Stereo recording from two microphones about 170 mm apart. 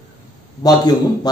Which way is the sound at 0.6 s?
25° left (ahead or behind).